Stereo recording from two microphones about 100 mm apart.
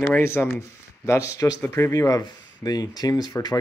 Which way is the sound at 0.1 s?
25° left (ahead or behind).